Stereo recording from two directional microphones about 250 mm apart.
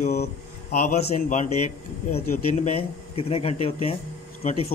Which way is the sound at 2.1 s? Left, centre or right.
Left.